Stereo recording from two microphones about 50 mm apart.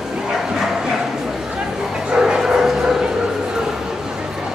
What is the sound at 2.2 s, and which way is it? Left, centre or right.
Bow-wow, centre.